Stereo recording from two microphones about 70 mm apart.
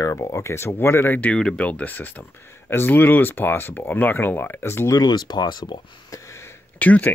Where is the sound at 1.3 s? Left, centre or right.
Centre; by 5.0 s left.